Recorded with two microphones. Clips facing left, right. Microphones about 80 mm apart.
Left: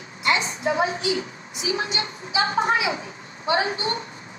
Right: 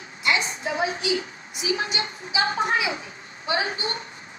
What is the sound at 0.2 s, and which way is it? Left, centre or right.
A woman's voice, left.